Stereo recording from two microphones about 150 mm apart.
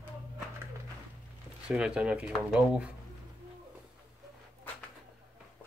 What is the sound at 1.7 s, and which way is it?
Speech, 5° right (ahead or behind).